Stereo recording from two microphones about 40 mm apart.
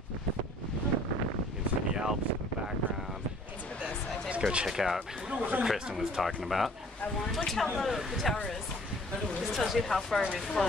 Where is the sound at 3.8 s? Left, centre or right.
Right.